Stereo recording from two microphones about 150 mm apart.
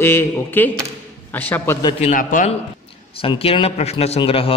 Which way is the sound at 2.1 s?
60° left (ahead or behind).